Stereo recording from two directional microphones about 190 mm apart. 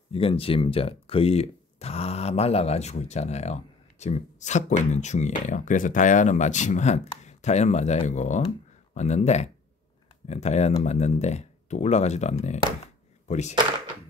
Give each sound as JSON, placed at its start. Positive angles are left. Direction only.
{"t": 0.1, "sound": "speech", "side_deg": 30}